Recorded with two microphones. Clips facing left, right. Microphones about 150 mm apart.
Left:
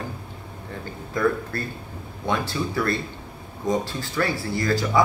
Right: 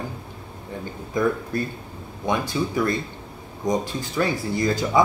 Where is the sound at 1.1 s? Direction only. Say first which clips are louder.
Right 1 dB; 15° right (ahead or behind).